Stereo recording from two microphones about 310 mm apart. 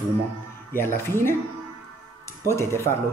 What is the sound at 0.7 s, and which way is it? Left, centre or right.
Speech, centre.